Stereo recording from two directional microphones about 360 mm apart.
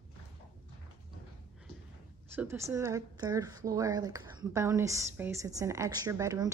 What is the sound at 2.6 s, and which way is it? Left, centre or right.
A woman's voice, centre.